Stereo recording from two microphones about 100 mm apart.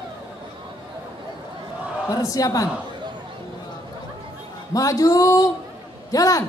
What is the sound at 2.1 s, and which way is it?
Speech, 35° left (ahead or behind).